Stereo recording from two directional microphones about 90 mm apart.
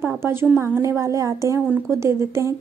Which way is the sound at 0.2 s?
25° right (ahead or behind).